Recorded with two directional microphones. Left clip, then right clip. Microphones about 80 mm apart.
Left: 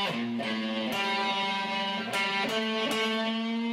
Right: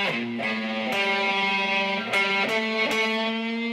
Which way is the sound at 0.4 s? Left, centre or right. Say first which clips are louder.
Right 4 dB; right.